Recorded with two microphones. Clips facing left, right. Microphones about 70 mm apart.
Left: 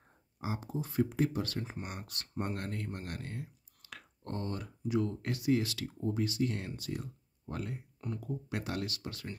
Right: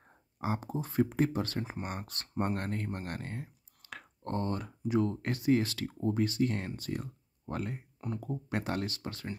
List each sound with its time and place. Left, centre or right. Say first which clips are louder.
0.4 s speech: right 3 dB; right
5.9 s speech: right 3 dB; right